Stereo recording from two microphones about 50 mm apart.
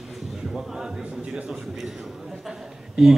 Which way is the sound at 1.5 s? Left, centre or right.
Centre.